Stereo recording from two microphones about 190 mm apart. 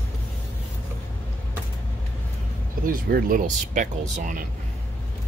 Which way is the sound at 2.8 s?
45° right (ahead or behind).